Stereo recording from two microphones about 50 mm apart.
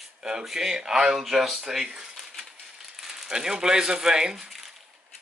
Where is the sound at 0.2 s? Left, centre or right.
Centre.